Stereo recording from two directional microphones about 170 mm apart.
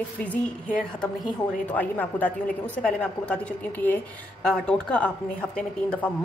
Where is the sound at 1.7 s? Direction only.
10° left (ahead or behind).